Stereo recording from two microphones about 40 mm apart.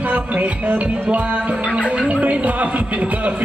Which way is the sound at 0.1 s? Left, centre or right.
Right.